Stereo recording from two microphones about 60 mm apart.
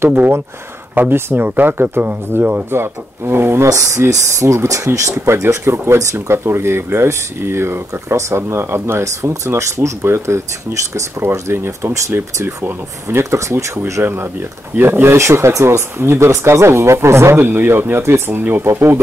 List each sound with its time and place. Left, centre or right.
0.1 s speech: right
3.6 s speech: right
9.0 s speech: right
14.0 s speech: right
15.1 s speech: right